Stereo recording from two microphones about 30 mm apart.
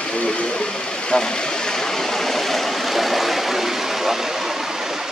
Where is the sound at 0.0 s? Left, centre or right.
Left.